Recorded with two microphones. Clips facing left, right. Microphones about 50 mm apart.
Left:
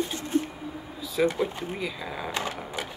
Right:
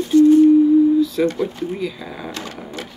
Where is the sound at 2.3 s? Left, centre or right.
Centre.